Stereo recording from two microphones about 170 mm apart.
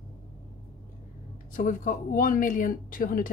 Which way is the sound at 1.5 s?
50° left (ahead or behind).